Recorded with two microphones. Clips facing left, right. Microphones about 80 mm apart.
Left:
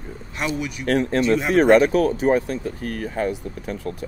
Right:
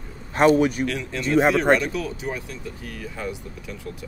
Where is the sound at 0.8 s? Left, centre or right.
Left.